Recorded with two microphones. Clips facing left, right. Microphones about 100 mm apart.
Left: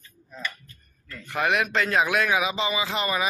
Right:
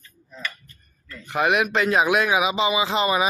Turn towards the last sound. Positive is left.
turn(degrees=-20)  # may be behind; listen again after turning